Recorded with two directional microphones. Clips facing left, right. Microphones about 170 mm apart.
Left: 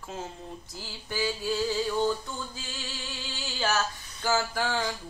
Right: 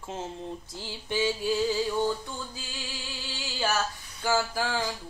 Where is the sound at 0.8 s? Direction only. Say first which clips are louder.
Right 3 dB; 20° right (ahead or behind).